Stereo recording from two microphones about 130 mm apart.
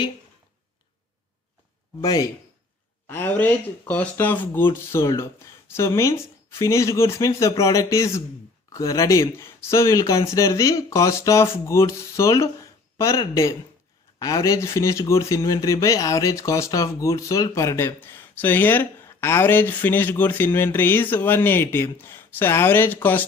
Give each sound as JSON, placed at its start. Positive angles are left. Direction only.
{"t": 2.0, "sound": "speech", "side_deg": 30}
{"t": 3.1, "sound": "speech", "side_deg": 15}